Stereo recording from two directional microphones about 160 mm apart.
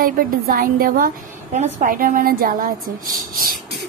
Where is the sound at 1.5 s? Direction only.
45° right (ahead or behind); by 2.7 s 65° right (ahead or behind).